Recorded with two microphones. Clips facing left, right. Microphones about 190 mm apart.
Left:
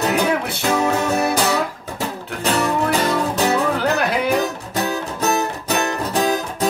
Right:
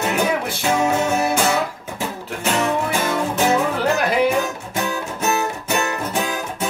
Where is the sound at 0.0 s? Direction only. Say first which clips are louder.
Left 2 dB; 35° left (ahead or behind).